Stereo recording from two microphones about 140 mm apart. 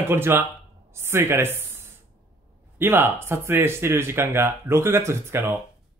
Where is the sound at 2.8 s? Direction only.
15° right (ahead or behind).